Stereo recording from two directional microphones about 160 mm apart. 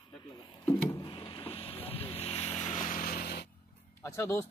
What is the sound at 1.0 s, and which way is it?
Vehicle, 30° left (ahead or behind).